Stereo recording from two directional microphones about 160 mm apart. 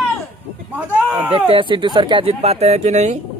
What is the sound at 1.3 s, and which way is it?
Speech, 35° right (ahead or behind).